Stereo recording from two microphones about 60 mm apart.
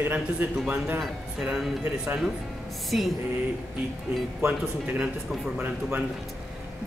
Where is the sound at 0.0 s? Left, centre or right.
Right.